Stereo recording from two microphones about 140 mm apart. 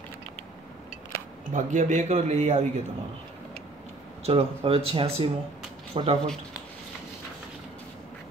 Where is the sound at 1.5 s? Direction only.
60° right (ahead or behind).